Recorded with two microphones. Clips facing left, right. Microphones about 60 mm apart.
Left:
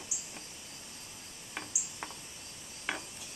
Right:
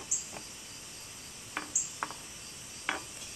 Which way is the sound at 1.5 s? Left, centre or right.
Right.